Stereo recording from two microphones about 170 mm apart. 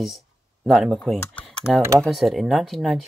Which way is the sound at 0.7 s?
Centre (ahead or behind).